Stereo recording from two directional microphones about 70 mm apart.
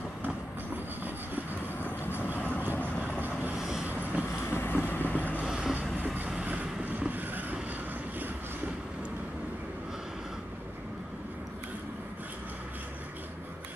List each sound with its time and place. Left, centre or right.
2.3 s vehicle: left
3.2 s vehicle: right
3.5 s vehicle: centre
3.8 s vehicle: right
4.5 s vehicle: left
5.4 s vehicle: centre
6.4 s vehicle: right